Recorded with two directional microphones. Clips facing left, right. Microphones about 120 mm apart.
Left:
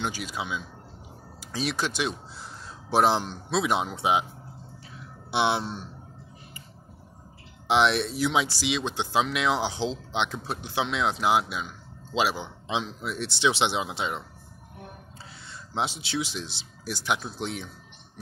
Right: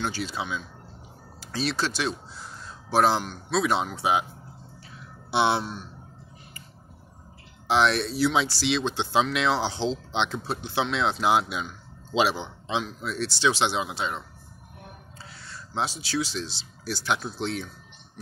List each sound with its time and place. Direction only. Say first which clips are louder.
0.0 s speech: right 2 dB; 15° left (ahead or behind)
5.3 s a man's voice: right 2 dB; 15° left (ahead or behind)
7.6 s speech: even; 20° left (ahead or behind)
15.4 s speech: even; 20° left (ahead or behind)